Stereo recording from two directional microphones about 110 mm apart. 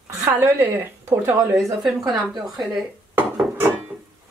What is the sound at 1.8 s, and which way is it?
A woman's voice, centre (ahead or behind).